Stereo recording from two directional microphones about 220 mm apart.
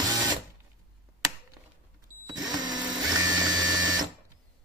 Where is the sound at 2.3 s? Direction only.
20° right (ahead or behind).